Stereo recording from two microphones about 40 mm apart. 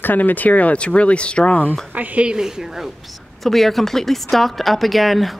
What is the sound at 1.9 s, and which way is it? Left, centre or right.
Speech, right.